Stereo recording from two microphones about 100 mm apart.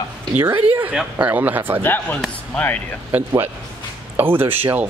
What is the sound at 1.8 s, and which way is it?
Speech, 20° left (ahead or behind).